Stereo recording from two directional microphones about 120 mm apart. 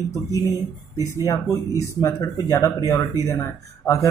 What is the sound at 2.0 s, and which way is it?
Speech, 25° left (ahead or behind).